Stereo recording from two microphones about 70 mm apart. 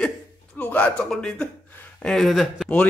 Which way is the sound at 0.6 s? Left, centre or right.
Left.